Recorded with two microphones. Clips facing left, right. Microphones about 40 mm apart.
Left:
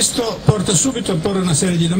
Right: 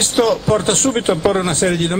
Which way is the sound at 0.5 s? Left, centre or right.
Right.